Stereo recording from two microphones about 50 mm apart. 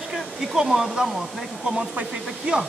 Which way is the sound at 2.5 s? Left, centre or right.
Right.